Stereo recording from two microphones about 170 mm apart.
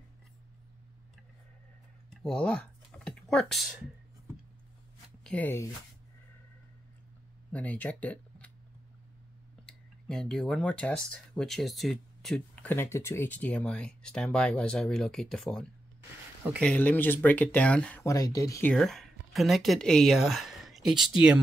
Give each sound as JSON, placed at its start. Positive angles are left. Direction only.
{"t": 2.0, "sound": "typing", "side_deg": 5}
{"t": 5.2, "sound": "speech", "side_deg": 10}
{"t": 7.5, "sound": "speech", "side_deg": 10}
{"t": 9.7, "sound": "speech", "side_deg": 5}
{"t": 16.6, "sound": "speech", "side_deg": 10}
{"t": 18.0, "sound": "speech", "side_deg": 20}
{"t": 18.7, "sound": "speech", "side_deg": 0}